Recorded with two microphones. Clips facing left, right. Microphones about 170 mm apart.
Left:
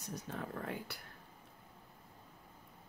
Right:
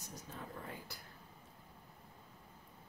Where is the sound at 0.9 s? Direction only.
65° left (ahead or behind).